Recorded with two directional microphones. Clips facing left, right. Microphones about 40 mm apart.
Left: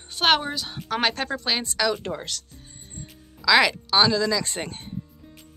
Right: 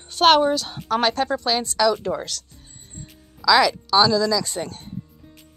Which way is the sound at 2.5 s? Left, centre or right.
Centre.